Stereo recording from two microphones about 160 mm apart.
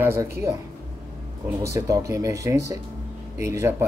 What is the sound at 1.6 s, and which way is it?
A man's voice, 20° right (ahead or behind).